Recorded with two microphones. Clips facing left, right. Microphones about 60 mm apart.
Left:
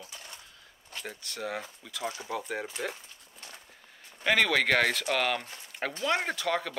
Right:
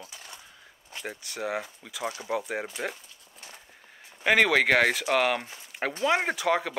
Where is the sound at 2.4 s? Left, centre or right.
Centre.